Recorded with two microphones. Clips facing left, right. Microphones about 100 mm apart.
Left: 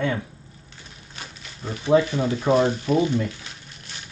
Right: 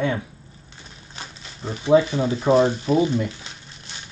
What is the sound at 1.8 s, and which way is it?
Speech, 15° right (ahead or behind).